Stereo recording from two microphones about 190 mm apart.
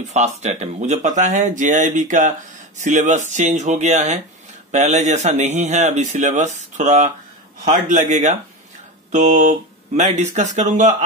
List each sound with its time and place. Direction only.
0.1 s speech: 35° right (ahead or behind)